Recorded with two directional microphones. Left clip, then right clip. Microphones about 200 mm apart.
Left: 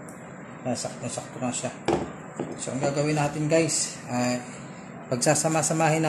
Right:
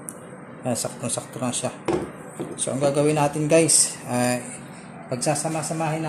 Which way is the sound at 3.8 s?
50° right (ahead or behind).